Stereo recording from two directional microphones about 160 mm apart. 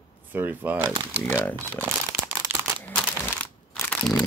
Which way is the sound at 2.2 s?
15° right (ahead or behind).